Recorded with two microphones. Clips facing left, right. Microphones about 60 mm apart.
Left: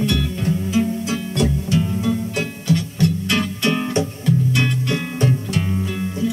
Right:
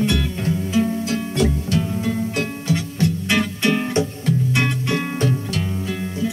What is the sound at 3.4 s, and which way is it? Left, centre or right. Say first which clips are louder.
Music: right 2 dB; right.